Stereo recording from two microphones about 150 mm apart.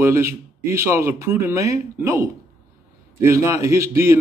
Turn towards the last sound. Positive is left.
turn(degrees=-20)  # may be behind; listen again after turning